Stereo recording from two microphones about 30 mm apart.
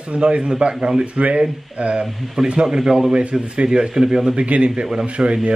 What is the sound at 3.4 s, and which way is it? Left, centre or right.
Speech, right.